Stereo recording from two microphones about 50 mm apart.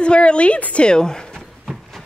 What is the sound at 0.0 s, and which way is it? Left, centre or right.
Speech, left.